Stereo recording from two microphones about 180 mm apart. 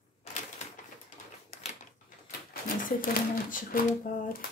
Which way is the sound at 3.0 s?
50° left (ahead or behind).